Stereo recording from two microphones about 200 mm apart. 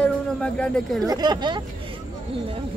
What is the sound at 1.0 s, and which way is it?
Speech, 20° right (ahead or behind).